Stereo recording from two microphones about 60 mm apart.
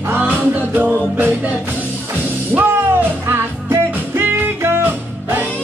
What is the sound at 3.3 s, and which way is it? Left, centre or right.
Music, right.